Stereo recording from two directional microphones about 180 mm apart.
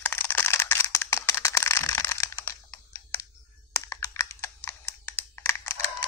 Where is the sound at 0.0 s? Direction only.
10° left (ahead or behind).